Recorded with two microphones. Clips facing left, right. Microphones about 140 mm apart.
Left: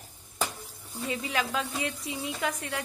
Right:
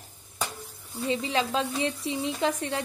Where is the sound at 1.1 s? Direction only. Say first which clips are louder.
Right 4 dB; 25° right (ahead or behind).